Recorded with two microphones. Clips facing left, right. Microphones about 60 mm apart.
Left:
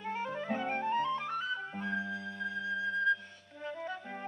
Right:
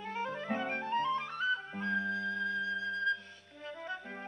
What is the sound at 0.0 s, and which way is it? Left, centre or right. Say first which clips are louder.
Music: left 1 dB; centre.